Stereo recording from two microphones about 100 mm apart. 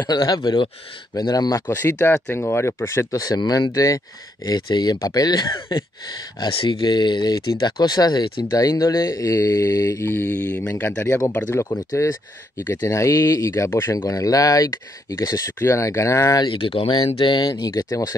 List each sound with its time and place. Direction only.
0.0 s speech: 45° left (ahead or behind)
1.7 s speech: 25° left (ahead or behind)
4.5 s speech: 45° left (ahead or behind)
6.5 s speech: 55° left (ahead or behind); by 10.7 s 15° left (ahead or behind)
11.0 s speech: 30° left (ahead or behind)
13.9 s speech: 35° left (ahead or behind)
16.4 s speech: 60° left (ahead or behind)
17.5 s speech: 35° left (ahead or behind)